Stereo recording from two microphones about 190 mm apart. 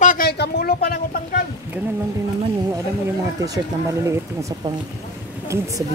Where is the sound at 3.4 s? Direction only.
15° right (ahead or behind).